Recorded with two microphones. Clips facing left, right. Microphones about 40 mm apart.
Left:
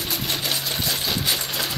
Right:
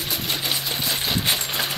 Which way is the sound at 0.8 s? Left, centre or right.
Right.